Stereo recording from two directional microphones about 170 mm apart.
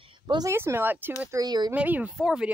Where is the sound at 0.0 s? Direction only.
30° right (ahead or behind).